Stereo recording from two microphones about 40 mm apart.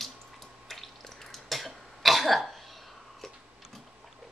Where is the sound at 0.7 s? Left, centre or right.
Centre.